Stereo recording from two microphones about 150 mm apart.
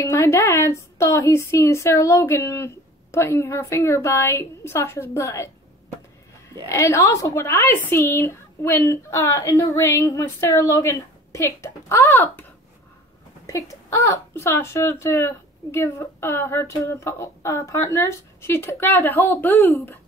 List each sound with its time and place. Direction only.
0.1 s speech: 20° left (ahead or behind)
6.7 s speech: 20° left (ahead or behind)
13.5 s speech: 20° left (ahead or behind)